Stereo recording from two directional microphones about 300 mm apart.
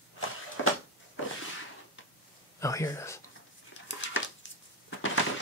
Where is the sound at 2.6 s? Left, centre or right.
Centre.